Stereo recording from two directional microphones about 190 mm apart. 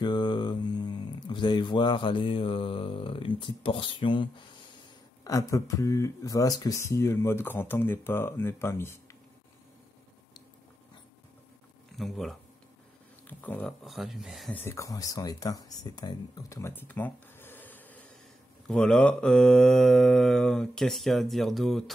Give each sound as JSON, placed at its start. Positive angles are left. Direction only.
{"t": 0.0, "sound": "speech", "side_deg": 25}
{"t": 12.0, "sound": "mantra", "side_deg": 0}
{"t": 14.6, "sound": "speech", "side_deg": 15}
{"t": 18.7, "sound": "mantra", "side_deg": 5}